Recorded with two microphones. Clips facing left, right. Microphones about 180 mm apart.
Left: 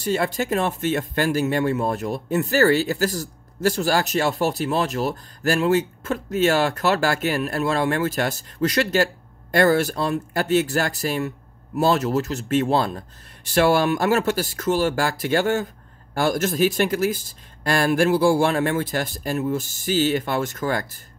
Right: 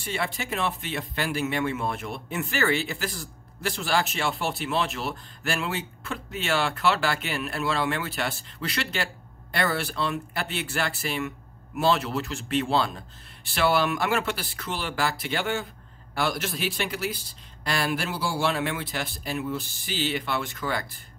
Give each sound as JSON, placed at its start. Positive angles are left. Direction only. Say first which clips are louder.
{"t": 0.0, "sound": "speech", "louder": "left 8 dB", "side_deg": 40}